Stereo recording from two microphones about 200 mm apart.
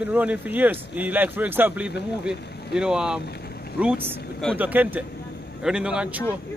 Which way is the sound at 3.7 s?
5° right (ahead or behind).